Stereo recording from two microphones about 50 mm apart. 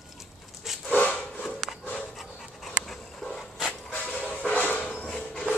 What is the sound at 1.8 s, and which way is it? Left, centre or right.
Dog, left.